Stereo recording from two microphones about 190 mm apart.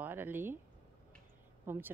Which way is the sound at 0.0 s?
10° right (ahead or behind).